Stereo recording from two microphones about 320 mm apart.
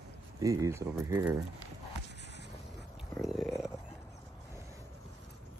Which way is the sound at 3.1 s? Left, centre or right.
Centre.